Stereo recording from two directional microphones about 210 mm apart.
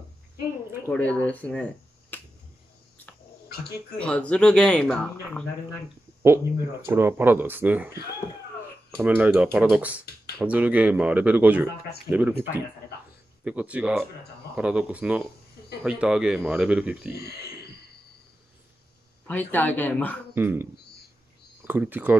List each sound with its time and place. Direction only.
0.8 s speech: 5° left (ahead or behind)
4.0 s speech: 5° left (ahead or behind)
6.9 s speech: 10° right (ahead or behind)
17.1 s speech: 50° left (ahead or behind)
19.2 s speech: 10° left (ahead or behind)
20.3 s speech: 10° right (ahead or behind)
21.6 s speech: 10° right (ahead or behind)